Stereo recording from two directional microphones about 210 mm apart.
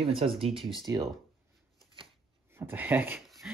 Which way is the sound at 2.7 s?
10° right (ahead or behind).